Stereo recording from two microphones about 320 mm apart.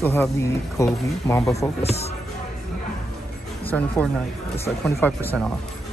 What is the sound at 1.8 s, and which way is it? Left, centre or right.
Speech, centre.